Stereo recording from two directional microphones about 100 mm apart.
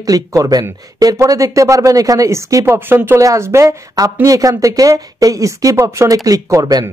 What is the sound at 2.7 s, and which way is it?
Speech, 20° right (ahead or behind).